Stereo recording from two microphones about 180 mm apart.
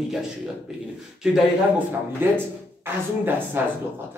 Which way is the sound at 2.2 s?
10° right (ahead or behind).